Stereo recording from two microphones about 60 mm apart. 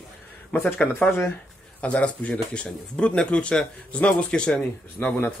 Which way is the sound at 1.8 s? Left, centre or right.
Left.